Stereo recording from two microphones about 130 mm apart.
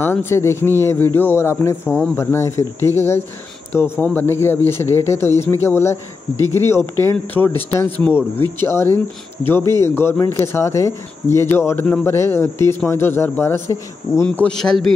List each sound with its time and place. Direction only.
0.0 s a man's voice: 15° left (ahead or behind)
14.2 s speech: 10° left (ahead or behind)